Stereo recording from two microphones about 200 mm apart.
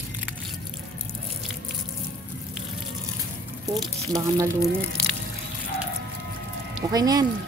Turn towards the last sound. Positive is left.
turn(degrees=-20)  # may be behind; listen again after turning